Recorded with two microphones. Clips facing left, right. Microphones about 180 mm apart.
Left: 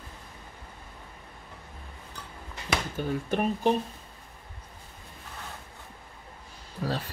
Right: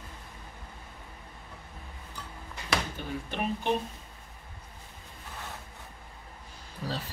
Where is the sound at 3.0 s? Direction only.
45° left (ahead or behind).